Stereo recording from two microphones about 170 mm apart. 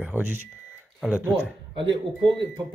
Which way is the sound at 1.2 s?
10° right (ahead or behind).